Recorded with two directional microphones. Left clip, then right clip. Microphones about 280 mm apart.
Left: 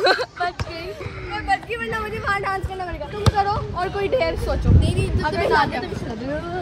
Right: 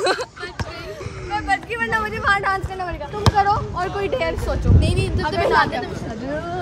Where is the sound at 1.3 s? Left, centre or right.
Centre.